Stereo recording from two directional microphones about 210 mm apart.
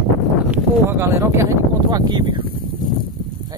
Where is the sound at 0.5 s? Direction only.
10° right (ahead or behind).